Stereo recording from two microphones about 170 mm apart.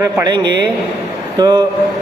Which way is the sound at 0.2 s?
25° right (ahead or behind).